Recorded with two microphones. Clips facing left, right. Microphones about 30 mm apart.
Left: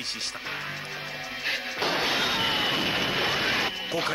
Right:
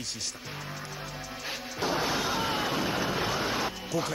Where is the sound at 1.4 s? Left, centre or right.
Left.